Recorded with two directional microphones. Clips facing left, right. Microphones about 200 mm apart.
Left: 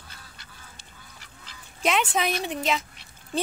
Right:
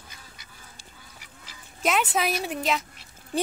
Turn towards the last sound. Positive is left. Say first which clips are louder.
# even
turn(degrees=0)  # may be behind; listen again after turning